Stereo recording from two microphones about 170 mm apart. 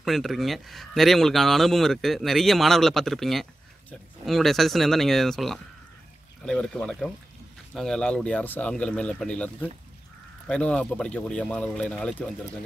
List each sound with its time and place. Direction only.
0.0 s speech: centre (ahead or behind)